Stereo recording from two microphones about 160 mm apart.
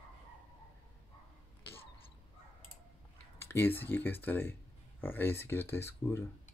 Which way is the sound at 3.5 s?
15° left (ahead or behind).